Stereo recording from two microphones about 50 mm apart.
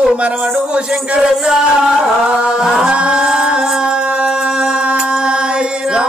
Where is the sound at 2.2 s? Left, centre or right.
Centre.